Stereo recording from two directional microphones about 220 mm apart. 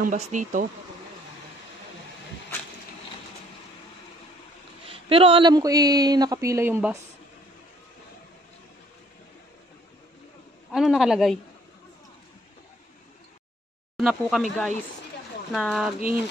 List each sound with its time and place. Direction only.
0.0 s speech: 35° right (ahead or behind)
4.8 s speech: 25° right (ahead or behind)
10.7 s speech: centre (ahead or behind)
13.9 s speech: centre (ahead or behind)